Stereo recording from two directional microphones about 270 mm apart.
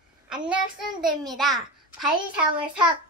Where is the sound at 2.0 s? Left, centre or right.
Centre.